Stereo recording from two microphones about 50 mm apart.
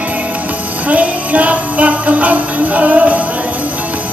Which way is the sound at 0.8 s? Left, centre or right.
Right.